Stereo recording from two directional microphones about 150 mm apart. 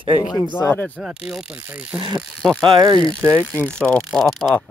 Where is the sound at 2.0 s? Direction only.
35° right (ahead or behind).